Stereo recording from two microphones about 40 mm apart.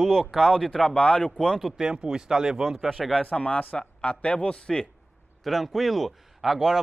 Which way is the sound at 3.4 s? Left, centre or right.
Left.